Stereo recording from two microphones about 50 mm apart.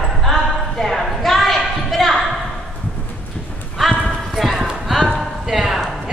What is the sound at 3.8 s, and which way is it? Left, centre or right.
Clip-clop, centre.